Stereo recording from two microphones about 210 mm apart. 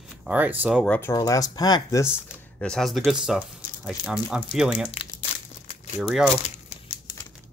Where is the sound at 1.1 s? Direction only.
15° left (ahead or behind).